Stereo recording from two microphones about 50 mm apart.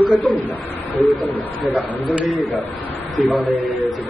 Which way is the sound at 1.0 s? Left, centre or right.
Right.